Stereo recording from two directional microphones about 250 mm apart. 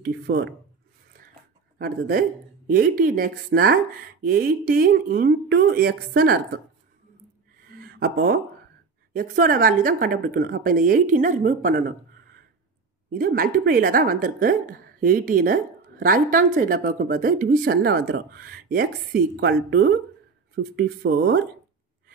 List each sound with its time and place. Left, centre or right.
0.0 s speech: right
1.8 s speech: right
8.0 s speech: right
13.1 s speech: right